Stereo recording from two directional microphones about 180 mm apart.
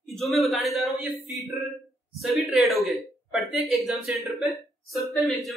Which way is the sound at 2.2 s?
Centre (ahead or behind).